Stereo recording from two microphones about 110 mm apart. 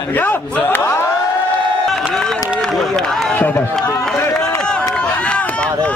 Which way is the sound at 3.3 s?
15° left (ahead or behind).